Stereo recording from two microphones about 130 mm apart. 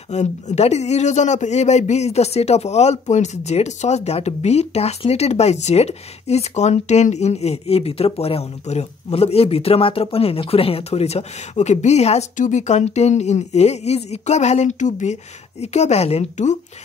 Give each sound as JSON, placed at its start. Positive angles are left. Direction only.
{"t": 0.1, "sound": "speech", "side_deg": 60}
{"t": 15.6, "sound": "speech", "side_deg": 60}